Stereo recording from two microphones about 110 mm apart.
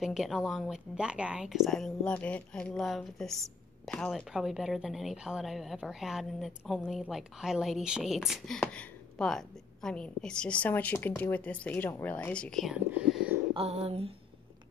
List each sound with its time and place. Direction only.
0.0 s a woman's voice: 5° right (ahead or behind)
12.9 s whispering: 10° right (ahead or behind)
13.6 s speech: 70° right (ahead or behind)